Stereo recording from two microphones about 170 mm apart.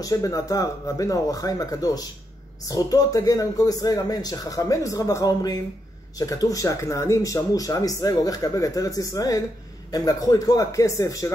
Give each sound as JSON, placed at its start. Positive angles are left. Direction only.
{"t": 0.0, "sound": "speech", "side_deg": 20}